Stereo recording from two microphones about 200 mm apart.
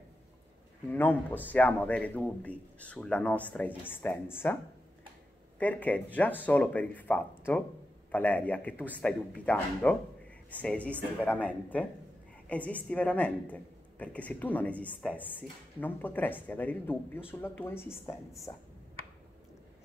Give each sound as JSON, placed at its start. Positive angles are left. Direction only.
{"t": 0.9, "sound": "a woman's voice", "side_deg": 10}
{"t": 5.6, "sound": "a woman's voice", "side_deg": 5}